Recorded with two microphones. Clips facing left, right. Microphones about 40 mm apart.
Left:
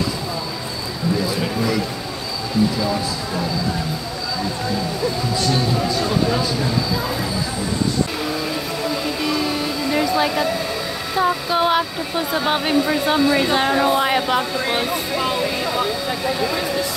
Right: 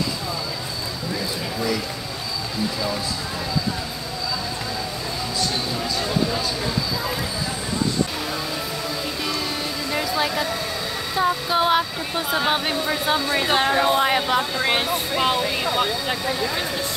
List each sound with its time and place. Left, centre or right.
9.9 s speech: centre
13.6 s speech: centre
14.7 s speech: right